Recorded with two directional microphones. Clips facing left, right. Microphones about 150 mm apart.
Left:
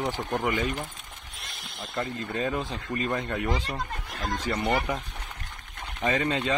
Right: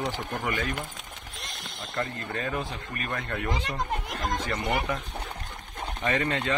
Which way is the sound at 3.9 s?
15° right (ahead or behind).